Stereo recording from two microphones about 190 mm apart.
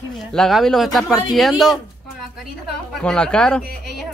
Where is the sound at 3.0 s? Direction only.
5° left (ahead or behind).